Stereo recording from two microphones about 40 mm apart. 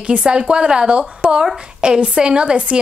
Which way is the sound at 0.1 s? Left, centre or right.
Right.